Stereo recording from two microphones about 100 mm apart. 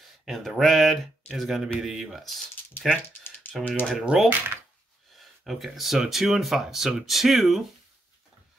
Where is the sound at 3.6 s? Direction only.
15° left (ahead or behind).